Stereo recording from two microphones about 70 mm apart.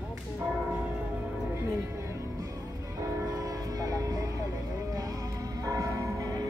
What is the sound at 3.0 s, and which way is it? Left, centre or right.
Vehicle, right.